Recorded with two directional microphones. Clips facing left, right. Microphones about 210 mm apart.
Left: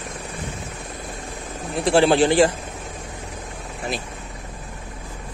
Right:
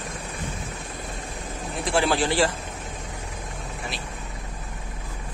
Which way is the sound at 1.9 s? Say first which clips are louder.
Left 7 dB; 25° left (ahead or behind).